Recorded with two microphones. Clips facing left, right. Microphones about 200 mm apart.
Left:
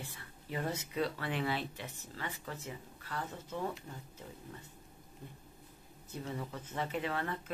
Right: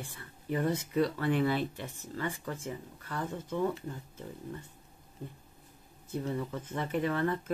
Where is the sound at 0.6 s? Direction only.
50° right (ahead or behind).